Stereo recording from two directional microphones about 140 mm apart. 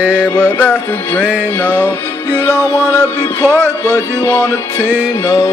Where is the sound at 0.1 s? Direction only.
10° left (ahead or behind).